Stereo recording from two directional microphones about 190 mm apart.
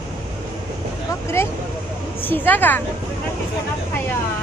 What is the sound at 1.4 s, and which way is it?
Speech, 15° left (ahead or behind).